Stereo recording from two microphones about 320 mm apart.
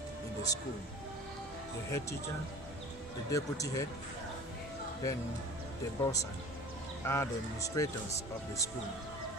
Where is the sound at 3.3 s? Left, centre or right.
Centre.